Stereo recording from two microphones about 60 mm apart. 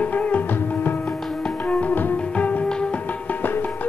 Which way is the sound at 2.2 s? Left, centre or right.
Centre.